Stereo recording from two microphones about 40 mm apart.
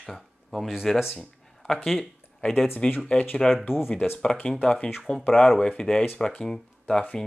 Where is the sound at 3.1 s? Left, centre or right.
Left.